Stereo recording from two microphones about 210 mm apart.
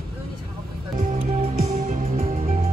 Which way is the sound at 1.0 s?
25° right (ahead or behind).